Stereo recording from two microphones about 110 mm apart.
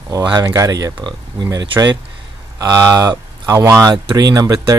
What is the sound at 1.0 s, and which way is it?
Speech, 45° right (ahead or behind).